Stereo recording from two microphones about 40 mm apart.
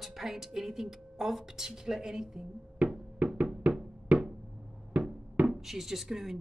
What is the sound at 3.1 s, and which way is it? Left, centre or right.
Music, right.